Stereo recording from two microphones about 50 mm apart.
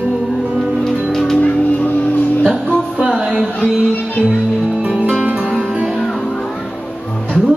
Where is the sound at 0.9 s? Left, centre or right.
Centre.